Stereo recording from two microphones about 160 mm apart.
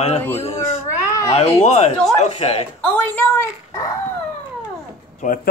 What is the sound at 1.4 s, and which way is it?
Speech, 40° left (ahead or behind).